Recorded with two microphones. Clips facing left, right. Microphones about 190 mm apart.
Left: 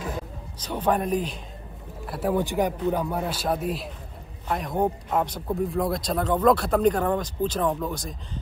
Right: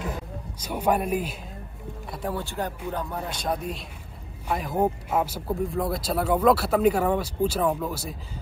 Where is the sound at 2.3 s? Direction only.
15° left (ahead or behind).